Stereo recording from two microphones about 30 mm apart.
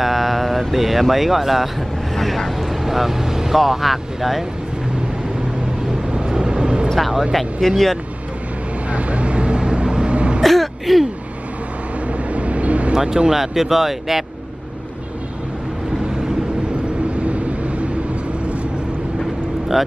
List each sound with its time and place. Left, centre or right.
0.0 s speech: centre
2.1 s vehicle: centre
2.8 s vehicle: centre
3.5 s speech: centre
6.1 s vehicle: right
7.0 s speech: centre
7.6 s speech: centre
8.9 s vehicle: right
10.4 s throat clearing: centre
12.1 s vehicle: right
12.9 s speech: right
13.3 s speech: centre
17.2 s vehicle: right